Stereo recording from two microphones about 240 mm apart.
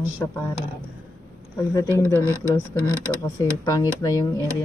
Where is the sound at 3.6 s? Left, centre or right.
Centre.